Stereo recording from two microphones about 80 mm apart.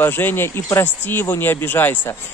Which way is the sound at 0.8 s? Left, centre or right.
Left.